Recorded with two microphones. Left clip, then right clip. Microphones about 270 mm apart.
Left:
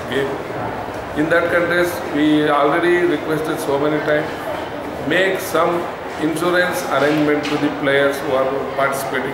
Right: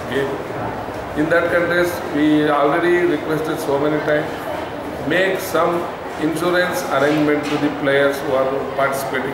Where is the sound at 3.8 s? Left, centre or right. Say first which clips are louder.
Left 1 dB; centre.